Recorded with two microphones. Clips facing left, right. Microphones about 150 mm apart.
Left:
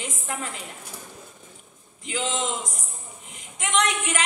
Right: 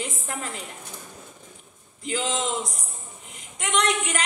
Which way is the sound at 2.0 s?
40° right (ahead or behind).